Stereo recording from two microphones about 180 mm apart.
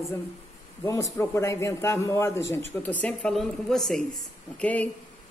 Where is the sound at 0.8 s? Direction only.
15° left (ahead or behind).